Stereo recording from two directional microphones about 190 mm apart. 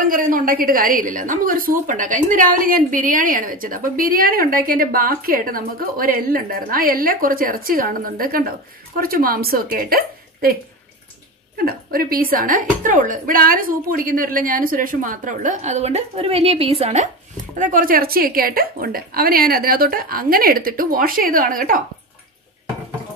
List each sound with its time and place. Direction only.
0.0 s a woman's voice: 45° right (ahead or behind)